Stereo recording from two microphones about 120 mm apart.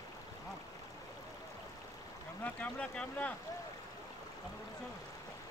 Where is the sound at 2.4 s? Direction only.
10° left (ahead or behind).